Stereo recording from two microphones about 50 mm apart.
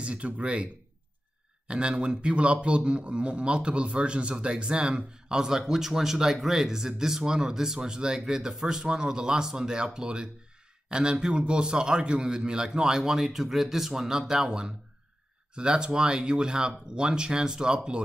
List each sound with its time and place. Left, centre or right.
0.0 s speech: right
1.7 s a man's voice: centre